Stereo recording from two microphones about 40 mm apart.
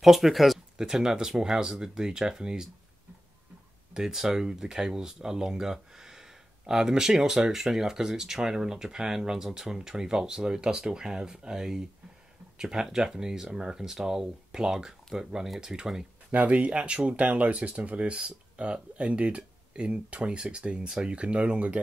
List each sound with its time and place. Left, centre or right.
0.0 s speech: centre
0.7 s speech: centre
3.9 s speech: centre
16.3 s speech: right